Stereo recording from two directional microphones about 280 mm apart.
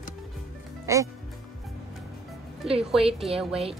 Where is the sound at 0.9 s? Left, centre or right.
Centre.